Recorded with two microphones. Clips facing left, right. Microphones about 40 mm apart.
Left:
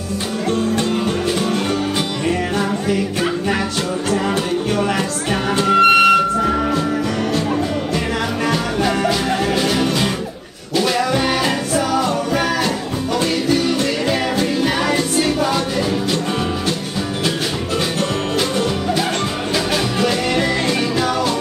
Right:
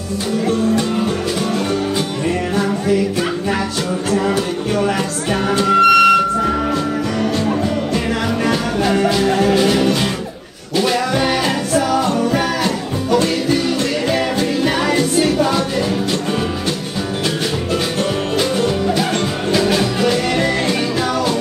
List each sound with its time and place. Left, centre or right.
0.5 s music: centre
4.7 s music: centre
5.9 s music: left
6.1 s music: centre
8.5 s music: centre
13.1 s music: centre
18.6 s music: centre